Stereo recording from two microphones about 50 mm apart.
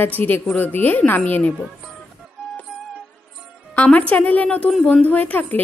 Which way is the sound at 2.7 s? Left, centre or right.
Centre.